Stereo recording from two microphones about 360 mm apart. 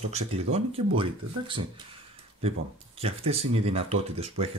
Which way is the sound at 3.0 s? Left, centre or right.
Centre.